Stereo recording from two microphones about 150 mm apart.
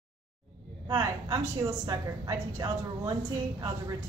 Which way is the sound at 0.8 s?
25° right (ahead or behind).